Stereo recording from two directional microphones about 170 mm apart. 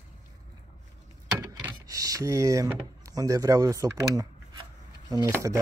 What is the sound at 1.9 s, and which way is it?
Speech, 20° right (ahead or behind).